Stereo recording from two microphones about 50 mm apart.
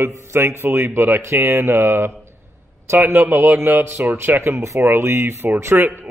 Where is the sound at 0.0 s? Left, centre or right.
Right.